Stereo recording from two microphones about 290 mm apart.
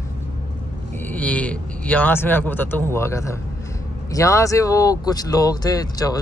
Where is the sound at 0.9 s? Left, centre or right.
Centre.